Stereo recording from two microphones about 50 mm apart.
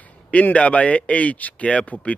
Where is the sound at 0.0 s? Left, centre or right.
Left.